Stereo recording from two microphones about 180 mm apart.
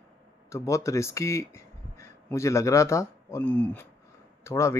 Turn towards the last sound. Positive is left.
turn(degrees=15)  # may be behind; listen again after turning